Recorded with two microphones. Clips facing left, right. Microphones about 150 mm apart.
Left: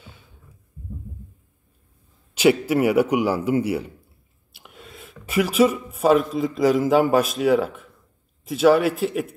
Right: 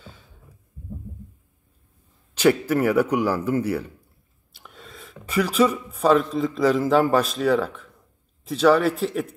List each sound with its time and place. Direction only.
2.4 s speech: 10° left (ahead or behind)
3.3 s speech: 25° left (ahead or behind)
3.5 s a man's voice: 10° left (ahead or behind)